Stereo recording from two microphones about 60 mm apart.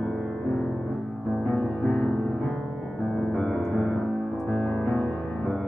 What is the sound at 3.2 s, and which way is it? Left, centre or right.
Music, centre.